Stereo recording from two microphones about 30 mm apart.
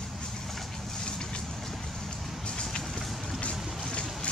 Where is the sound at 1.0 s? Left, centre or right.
Left.